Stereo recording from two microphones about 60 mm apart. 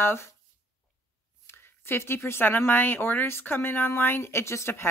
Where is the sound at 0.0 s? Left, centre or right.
Left.